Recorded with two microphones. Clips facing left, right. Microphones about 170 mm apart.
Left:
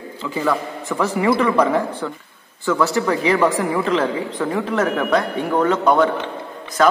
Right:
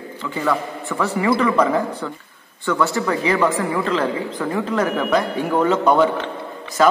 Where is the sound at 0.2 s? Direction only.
10° left (ahead or behind).